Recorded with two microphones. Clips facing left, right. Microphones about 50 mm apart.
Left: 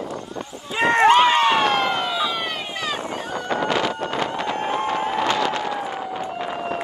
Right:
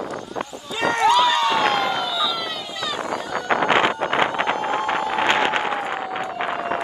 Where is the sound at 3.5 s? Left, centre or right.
Right.